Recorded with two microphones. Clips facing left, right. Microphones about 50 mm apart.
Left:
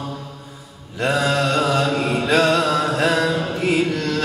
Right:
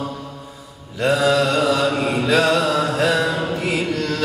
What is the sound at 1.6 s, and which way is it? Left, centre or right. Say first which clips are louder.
Mantra: right 1 dB; left.